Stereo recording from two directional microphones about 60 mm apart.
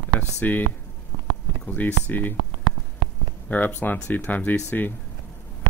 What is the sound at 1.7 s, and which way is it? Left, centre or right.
Speech, left.